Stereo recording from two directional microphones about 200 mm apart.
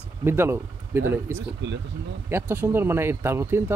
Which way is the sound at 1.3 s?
60° right (ahead or behind).